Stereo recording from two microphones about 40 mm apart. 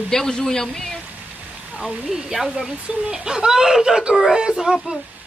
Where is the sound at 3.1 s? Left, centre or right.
Centre.